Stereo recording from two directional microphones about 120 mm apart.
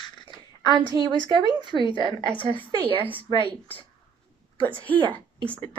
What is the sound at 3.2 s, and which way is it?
Speech, 45° left (ahead or behind).